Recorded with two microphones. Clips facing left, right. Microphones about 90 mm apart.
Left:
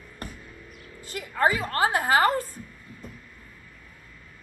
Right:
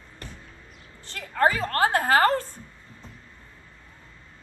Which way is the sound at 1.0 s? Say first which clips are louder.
Right 1 dB; 10° left (ahead or behind).